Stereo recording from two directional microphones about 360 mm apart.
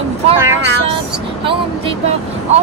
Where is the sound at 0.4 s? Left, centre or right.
Centre.